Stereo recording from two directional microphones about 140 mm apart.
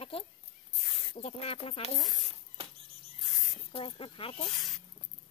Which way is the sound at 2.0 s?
Centre (ahead or behind).